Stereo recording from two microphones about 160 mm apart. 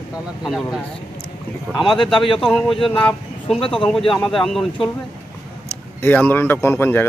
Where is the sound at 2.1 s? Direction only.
30° left (ahead or behind).